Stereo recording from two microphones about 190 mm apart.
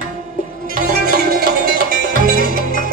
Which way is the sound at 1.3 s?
50° right (ahead or behind).